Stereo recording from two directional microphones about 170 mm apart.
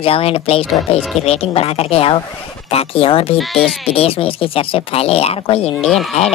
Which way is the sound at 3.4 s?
Centre (ahead or behind).